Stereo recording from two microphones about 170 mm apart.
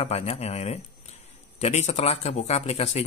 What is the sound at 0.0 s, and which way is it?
Speech, 40° left (ahead or behind).